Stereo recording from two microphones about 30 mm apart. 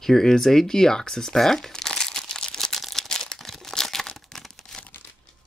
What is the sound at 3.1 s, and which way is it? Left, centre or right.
Crumpling, centre.